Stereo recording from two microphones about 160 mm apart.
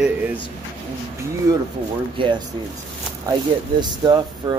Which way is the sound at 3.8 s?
25° right (ahead or behind).